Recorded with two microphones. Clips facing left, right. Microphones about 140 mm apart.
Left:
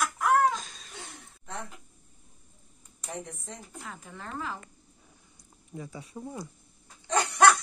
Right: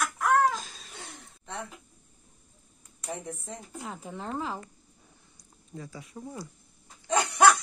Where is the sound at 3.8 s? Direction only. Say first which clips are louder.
Right 8 dB; 25° right (ahead or behind).